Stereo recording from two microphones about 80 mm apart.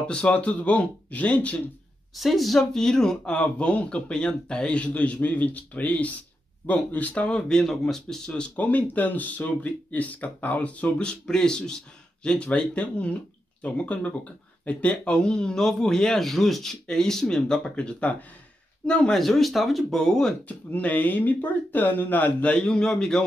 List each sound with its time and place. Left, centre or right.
0.0 s speech: centre
2.1 s speech: centre
20.4 s speech: centre